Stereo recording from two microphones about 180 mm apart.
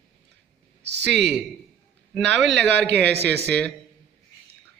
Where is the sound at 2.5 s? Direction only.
70° right (ahead or behind).